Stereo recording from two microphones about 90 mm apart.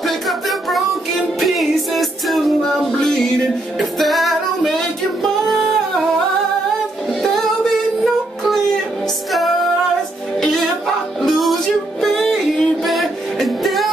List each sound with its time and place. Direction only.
0.0 s music: centre (ahead or behind)
11.1 s music: centre (ahead or behind)